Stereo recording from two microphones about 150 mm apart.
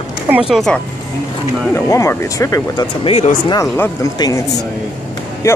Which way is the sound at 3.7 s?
15° left (ahead or behind).